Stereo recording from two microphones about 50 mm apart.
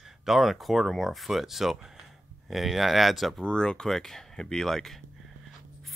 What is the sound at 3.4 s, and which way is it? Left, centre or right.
Speech, centre.